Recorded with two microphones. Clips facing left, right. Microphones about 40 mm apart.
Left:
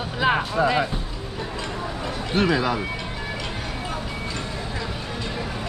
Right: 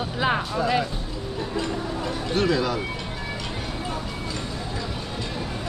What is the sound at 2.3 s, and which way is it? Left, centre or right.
Speech, left.